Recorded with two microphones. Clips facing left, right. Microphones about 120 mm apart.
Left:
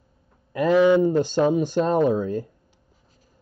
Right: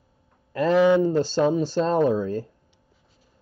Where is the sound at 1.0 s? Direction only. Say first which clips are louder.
Left 1 dB; 15° left (ahead or behind).